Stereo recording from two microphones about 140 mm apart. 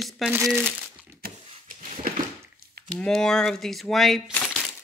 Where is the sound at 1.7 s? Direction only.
80° right.